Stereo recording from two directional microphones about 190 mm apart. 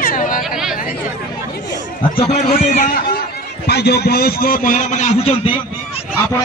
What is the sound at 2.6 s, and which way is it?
A man's voice, 40° left (ahead or behind).